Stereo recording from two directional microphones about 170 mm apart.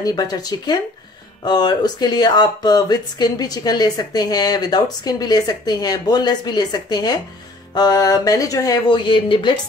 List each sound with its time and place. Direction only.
0.0 s speech: 25° left (ahead or behind)